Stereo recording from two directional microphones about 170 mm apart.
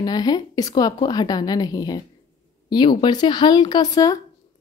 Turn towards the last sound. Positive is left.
turn(degrees=20)  # may be behind; listen again after turning